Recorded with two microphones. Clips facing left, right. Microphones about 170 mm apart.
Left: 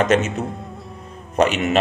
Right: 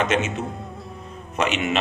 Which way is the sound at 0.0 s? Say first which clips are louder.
Left 5 dB; 40° left (ahead or behind).